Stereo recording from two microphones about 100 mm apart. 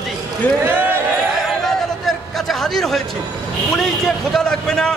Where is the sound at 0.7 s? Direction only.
20° right (ahead or behind).